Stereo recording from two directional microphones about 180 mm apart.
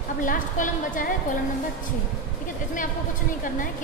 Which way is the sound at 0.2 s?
50° left (ahead or behind).